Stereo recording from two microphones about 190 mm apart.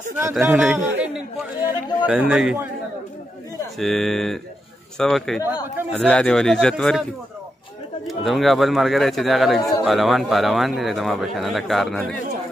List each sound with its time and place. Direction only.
0.1 s a man's voice: 5° right (ahead or behind)
3.7 s a man's voice: centre (ahead or behind)
5.4 s a man's voice: 10° right (ahead or behind)
5.9 s a man's voice: 5° left (ahead or behind)
8.1 s a man's voice: centre (ahead or behind)